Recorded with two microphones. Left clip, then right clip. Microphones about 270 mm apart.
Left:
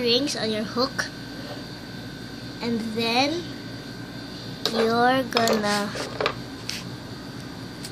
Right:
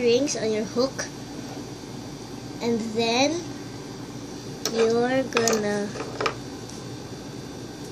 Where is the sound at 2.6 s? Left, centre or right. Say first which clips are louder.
Right 2 dB; centre.